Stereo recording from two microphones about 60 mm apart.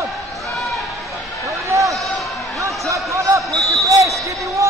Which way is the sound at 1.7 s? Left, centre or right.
Right.